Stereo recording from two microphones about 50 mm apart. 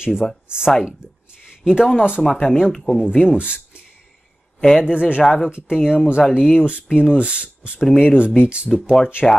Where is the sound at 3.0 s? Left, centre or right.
Centre.